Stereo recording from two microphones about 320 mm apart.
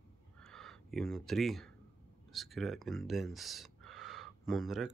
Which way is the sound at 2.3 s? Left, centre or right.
Centre.